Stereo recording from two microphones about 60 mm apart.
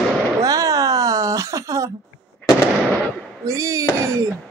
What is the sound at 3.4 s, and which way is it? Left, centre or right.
Speech, right.